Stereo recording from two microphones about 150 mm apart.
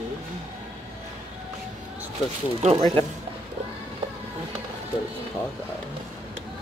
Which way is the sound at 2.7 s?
30° right (ahead or behind).